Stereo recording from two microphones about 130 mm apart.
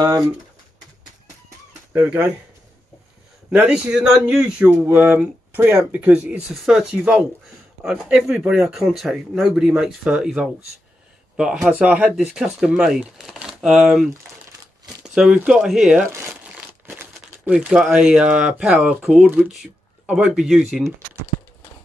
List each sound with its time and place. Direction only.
1.9 s speech: 15° right (ahead or behind)
3.4 s speech: 10° right (ahead or behind)
6.5 s a man's voice: centre (ahead or behind)
16.8 s crumpling: 15° right (ahead or behind)
17.6 s a man's voice: 5° right (ahead or behind)